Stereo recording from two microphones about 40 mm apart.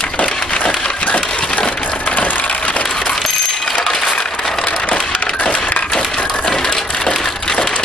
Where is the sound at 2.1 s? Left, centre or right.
Left.